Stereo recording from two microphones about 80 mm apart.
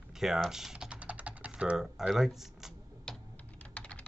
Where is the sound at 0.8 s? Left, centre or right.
Centre.